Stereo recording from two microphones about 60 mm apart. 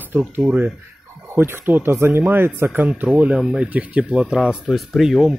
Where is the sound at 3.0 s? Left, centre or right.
Right.